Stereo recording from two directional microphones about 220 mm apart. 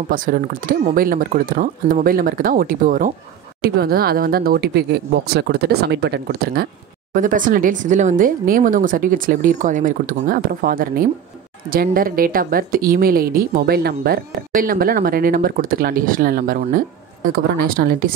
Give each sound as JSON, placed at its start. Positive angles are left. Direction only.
{"t": 0.1, "sound": "speech", "side_deg": -40}